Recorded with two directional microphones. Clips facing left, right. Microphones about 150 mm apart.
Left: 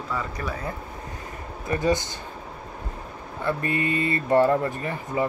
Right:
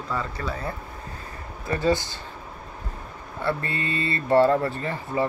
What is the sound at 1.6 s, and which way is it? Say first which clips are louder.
Speech: even; 20° left (ahead or behind).